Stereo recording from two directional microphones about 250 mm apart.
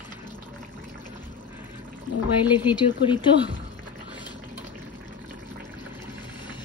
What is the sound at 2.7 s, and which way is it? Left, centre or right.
Speech, centre.